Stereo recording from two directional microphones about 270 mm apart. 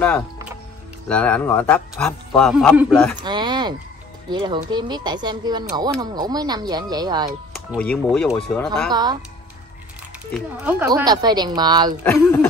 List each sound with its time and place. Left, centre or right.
1.0 s a man's voice: centre
3.3 s speech: centre
7.7 s a man's voice: centre
8.9 s speech: centre
10.3 s speech: centre
12.0 s speech: centre